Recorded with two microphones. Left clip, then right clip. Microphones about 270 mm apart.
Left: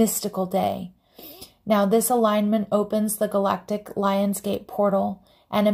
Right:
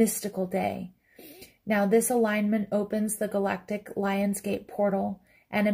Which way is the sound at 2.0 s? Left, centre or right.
Left.